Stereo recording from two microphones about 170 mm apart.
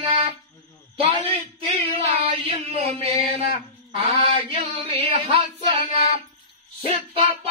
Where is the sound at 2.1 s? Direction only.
35° right (ahead or behind).